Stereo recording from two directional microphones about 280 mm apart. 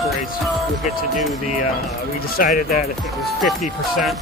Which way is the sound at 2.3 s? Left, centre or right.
Left.